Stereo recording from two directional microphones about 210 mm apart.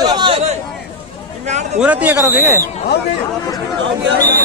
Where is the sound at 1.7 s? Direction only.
5° right (ahead or behind).